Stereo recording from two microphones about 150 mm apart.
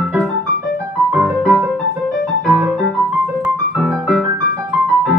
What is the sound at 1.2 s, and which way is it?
Music, centre (ahead or behind).